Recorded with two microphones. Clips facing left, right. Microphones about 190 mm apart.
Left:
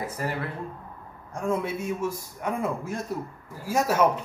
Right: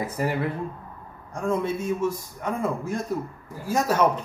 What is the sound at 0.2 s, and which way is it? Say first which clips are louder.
Speech: right 5 dB; 15° right (ahead or behind).